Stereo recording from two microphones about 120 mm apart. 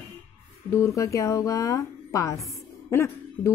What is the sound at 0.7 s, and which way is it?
A woman's voice, 25° left (ahead or behind).